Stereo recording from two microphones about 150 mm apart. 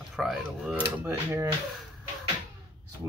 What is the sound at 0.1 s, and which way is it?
Speech, centre (ahead or behind).